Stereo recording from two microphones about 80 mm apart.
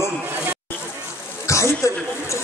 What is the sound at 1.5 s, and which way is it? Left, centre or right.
Speech, left.